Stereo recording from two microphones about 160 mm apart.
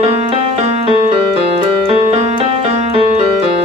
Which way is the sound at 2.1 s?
40° right (ahead or behind).